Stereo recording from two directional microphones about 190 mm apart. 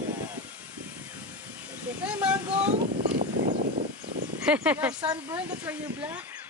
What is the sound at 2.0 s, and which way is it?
Speech, 5° right (ahead or behind).